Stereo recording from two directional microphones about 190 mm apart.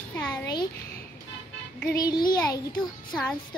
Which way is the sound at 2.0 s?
20° left (ahead or behind).